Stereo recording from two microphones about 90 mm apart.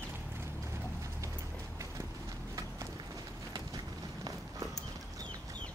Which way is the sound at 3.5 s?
45° right (ahead or behind).